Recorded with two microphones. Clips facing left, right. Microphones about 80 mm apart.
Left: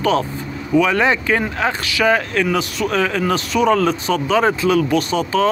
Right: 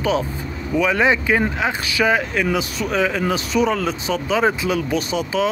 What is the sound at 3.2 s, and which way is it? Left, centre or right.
Speech, right.